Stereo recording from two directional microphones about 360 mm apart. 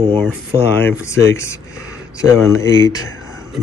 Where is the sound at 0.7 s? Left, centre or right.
Centre.